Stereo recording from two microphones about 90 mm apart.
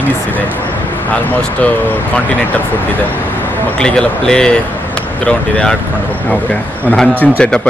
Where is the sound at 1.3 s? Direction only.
20° left (ahead or behind).